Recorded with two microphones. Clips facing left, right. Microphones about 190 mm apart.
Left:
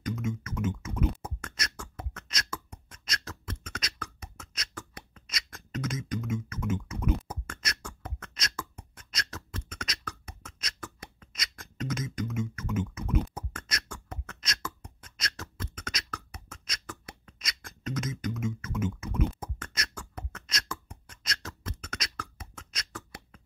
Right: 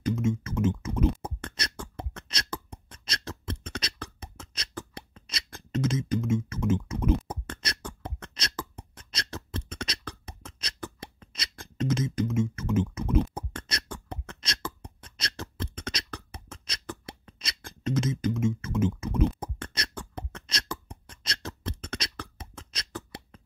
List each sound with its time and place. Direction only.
0.0 s beatboxing: 30° right (ahead or behind)